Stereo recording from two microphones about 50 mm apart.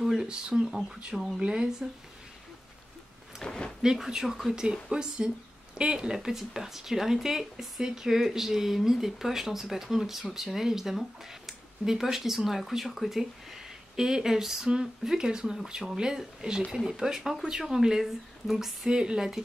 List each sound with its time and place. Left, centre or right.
0.0 s speech: centre
3.4 s speech: centre
3.8 s a woman's voice: centre
18.9 s speech: centre